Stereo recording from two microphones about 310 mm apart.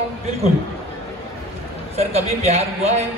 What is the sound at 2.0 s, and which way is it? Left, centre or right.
A man's voice, right.